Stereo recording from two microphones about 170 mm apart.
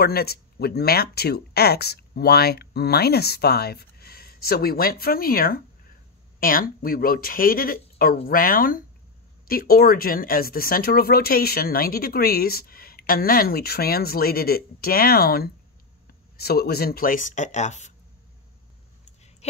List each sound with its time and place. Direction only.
0.0 s speech: 65° left (ahead or behind); by 17.9 s 45° left (ahead or behind)